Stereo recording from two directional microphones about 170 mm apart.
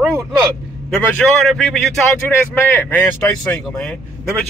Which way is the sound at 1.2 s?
5° left (ahead or behind).